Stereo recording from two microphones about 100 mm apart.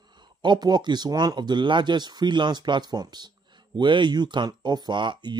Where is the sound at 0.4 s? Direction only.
50° right (ahead or behind).